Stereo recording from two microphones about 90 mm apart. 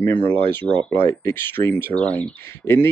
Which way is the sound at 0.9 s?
30° left (ahead or behind).